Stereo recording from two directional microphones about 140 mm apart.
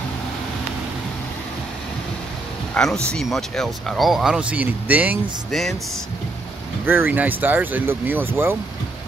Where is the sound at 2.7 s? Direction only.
5° left (ahead or behind); by 5.2 s 10° right (ahead or behind).